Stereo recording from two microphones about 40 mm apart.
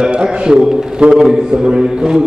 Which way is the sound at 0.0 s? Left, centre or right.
Right.